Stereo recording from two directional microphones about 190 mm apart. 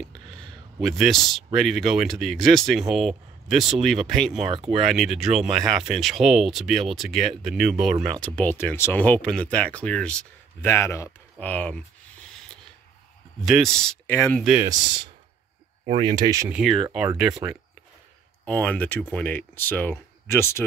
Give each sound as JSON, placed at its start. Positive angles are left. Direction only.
{"t": 0.0, "sound": "speech", "side_deg": 5}
{"t": 8.4, "sound": "speech", "side_deg": 10}
{"t": 13.4, "sound": "speech", "side_deg": 0}
{"t": 14.4, "sound": "speech", "side_deg": -5}
{"t": 16.0, "sound": "speech", "side_deg": -25}
{"t": 16.5, "sound": "speech", "side_deg": 0}
{"t": 18.4, "sound": "speech", "side_deg": 5}